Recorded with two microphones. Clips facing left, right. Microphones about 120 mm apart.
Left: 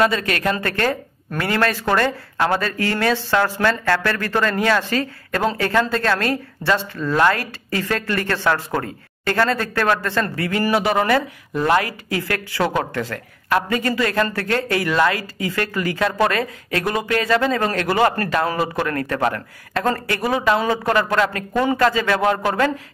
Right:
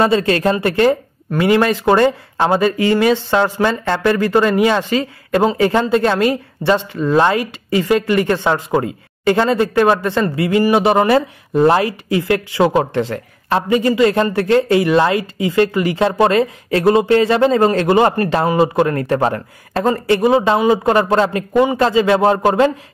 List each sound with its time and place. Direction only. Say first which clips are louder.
0.0 s speech: right 5 dB; 30° right (ahead or behind)